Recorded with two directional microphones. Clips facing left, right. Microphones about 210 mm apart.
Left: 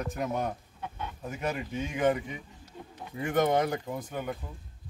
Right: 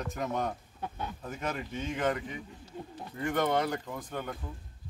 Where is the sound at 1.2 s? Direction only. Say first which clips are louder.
Left 4 dB; 10° left (ahead or behind).